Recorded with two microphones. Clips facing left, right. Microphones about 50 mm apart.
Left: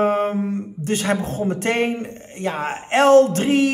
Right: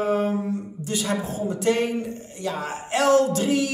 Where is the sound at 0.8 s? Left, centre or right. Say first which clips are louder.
Left 6 dB; left.